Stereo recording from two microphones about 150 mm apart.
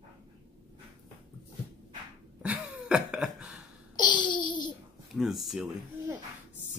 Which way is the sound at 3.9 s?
30° left (ahead or behind).